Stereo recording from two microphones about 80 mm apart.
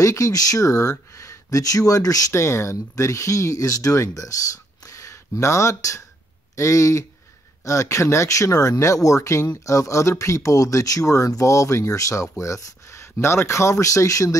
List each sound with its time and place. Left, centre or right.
0.0 s speech: left
4.8 s a sound: left
6.5 s speech: left